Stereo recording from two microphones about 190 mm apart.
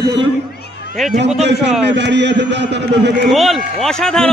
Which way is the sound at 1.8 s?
65° right (ahead or behind).